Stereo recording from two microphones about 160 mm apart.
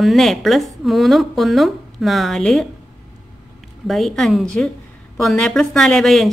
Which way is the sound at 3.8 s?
Centre (ahead or behind).